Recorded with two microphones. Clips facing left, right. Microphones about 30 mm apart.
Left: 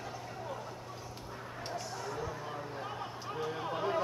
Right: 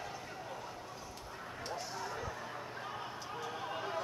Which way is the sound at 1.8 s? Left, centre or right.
Centre.